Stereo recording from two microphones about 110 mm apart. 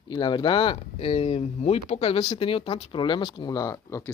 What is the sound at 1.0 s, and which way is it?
Speech, 65° left (ahead or behind).